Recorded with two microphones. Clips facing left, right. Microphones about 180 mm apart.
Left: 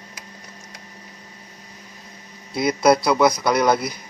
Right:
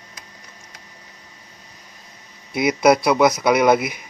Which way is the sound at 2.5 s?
20° right (ahead or behind).